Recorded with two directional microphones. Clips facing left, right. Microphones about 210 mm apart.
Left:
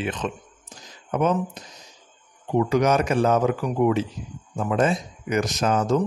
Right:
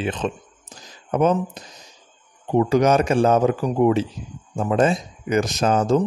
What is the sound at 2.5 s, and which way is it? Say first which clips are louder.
A man's voice: right 3 dB; 30° right (ahead or behind).